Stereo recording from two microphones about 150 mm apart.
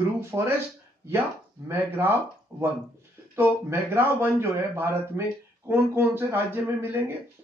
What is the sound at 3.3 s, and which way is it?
Speech, 15° right (ahead or behind).